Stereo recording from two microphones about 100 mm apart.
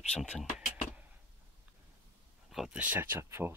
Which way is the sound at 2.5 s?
5° right (ahead or behind).